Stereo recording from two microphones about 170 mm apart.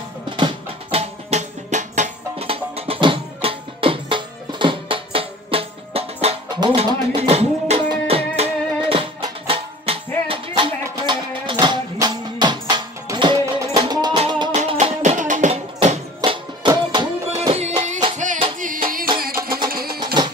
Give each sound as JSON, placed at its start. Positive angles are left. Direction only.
{"t": 0.4, "sound": "music", "side_deg": -30}
{"t": 1.3, "sound": "music", "side_deg": -45}
{"t": 14.5, "sound": "music", "side_deg": -40}
{"t": 16.2, "sound": "music", "side_deg": -25}
{"t": 17.4, "sound": "music", "side_deg": -40}